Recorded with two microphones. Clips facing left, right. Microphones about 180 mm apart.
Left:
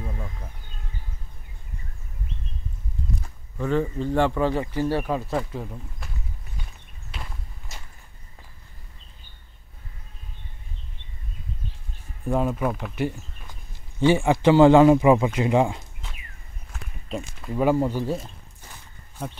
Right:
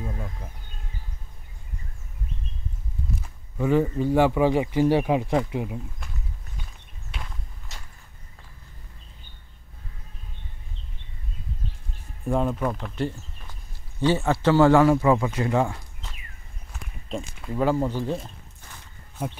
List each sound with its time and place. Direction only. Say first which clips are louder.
3.5 s speech: right 3 dB; 10° right (ahead or behind)
12.3 s speech: left 1 dB; 5° left (ahead or behind)
16.7 s walk: even; centre (ahead or behind)
17.6 s speech: left 2 dB; 15° left (ahead or behind)